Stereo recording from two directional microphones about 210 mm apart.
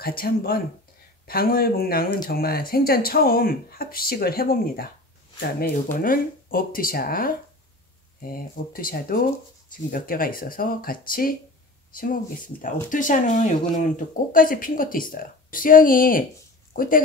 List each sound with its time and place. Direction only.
0.0 s speech: 45° left (ahead or behind)